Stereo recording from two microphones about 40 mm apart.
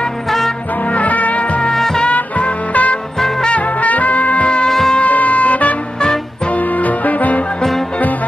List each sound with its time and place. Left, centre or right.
0.9 s music: left
1.7 s music: centre
2.0 s music: left
4.6 s wind instrument: centre
4.9 s music: left